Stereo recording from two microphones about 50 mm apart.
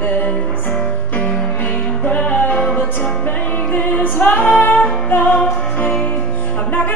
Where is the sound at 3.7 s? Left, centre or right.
Left.